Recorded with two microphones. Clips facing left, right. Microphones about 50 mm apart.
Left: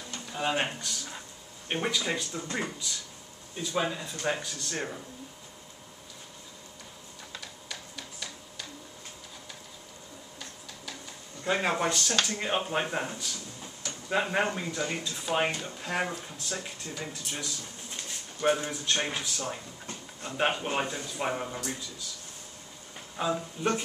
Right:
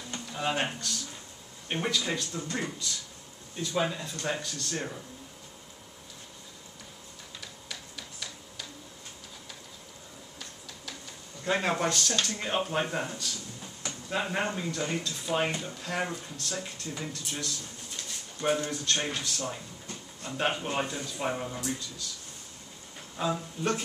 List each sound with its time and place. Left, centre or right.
0.3 s speech: centre
7.6 s a sound: centre
11.4 s speech: centre
19.9 s a sound: centre
20.8 s speech: centre
23.1 s speech: centre